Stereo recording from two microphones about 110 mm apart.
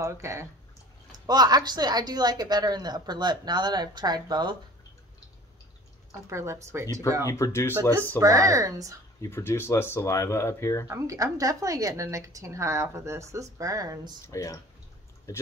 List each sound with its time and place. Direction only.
0.0 s a woman's voice: 25° right (ahead or behind)
1.1 s speech: 40° right (ahead or behind)
6.2 s a woman's voice: 25° right (ahead or behind)
7.2 s speech: 30° left (ahead or behind)
8.2 s speech: 30° right (ahead or behind)
9.2 s speech: 25° left (ahead or behind)
10.9 s a woman's voice: 30° right (ahead or behind)
14.2 s speech: 30° left (ahead or behind)